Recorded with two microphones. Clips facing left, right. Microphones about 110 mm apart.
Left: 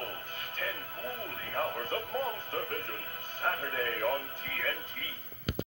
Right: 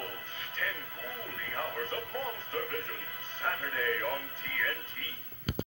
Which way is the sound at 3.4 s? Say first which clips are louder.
Left 2 dB; 40° left (ahead or behind).